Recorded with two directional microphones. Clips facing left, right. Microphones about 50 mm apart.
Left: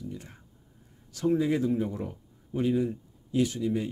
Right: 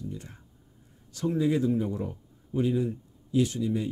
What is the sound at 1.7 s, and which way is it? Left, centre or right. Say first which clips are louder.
Speech: right 1 dB; centre.